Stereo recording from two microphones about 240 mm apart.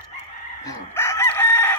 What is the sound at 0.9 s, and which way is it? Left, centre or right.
Chicken, centre.